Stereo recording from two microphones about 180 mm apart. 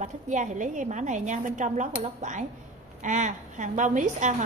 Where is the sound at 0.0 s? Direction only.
45° right (ahead or behind).